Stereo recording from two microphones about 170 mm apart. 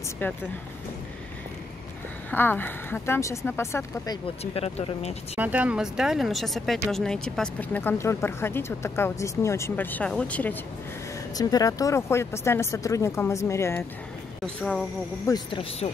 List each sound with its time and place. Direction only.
0.2 s speech: 10° left (ahead or behind)
2.3 s speech: 10° left (ahead or behind)
4.4 s speech: 35° left (ahead or behind)
5.4 s speech: 10° right (ahead or behind); by 10.6 s 10° left (ahead or behind)
11.3 s speech: 20° left (ahead or behind)
14.4 s speech: 5° left (ahead or behind)
15.2 s speech: 25° left (ahead or behind)
15.8 s a woman's voice: 35° left (ahead or behind)